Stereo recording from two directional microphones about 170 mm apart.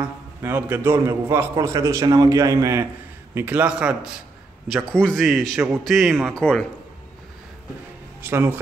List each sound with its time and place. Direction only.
0.0 s a man's voice: 10° right (ahead or behind)
8.2 s a man's voice: 10° right (ahead or behind)